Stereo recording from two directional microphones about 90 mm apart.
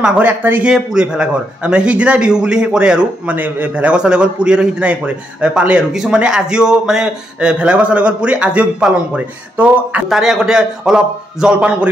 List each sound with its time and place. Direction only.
0.0 s speech: 15° right (ahead or behind)
10.0 s speech: 5° right (ahead or behind)